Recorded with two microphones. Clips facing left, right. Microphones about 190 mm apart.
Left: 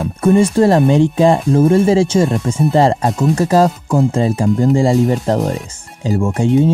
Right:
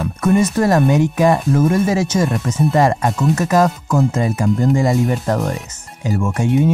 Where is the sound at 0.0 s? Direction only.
30° left (ahead or behind).